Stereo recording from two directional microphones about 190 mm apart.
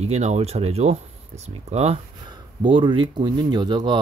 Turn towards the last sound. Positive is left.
turn(degrees=-25)  # may be behind; listen again after turning